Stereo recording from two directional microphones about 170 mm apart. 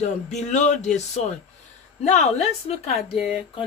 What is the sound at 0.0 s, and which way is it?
A woman's voice, 45° left (ahead or behind).